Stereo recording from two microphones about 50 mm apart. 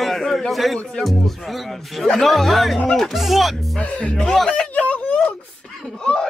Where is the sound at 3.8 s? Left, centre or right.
Left.